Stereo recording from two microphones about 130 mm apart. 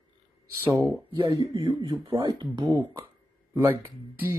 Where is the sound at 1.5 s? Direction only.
40° right (ahead or behind).